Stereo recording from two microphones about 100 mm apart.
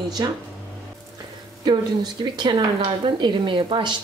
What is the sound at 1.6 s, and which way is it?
A woman's voice, 50° right (ahead or behind).